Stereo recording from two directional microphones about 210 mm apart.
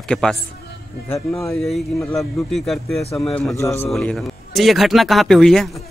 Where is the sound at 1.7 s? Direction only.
Centre (ahead or behind).